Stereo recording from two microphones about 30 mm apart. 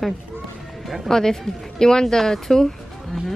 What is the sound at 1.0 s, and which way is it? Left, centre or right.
Speech, centre.